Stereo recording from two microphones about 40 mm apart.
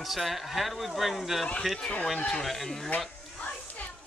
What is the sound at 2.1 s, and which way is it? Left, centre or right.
Speech, left.